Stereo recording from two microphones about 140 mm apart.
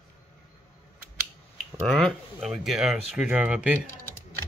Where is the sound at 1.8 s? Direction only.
Centre (ahead or behind).